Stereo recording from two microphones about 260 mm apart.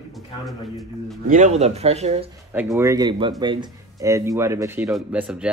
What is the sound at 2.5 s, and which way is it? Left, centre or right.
Speech, centre.